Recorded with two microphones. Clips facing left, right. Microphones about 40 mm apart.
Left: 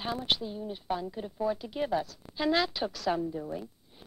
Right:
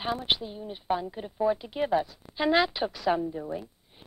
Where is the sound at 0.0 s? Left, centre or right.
Right.